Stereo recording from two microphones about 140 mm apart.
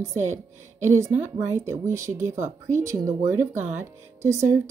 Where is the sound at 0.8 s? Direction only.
15° right (ahead or behind).